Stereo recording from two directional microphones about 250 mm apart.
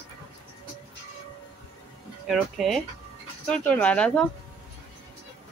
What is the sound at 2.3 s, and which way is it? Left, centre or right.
Speech, centre.